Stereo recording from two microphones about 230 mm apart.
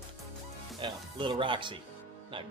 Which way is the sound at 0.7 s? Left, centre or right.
Right.